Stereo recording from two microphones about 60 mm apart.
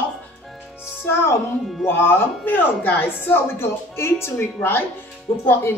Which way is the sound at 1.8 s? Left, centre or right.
Left.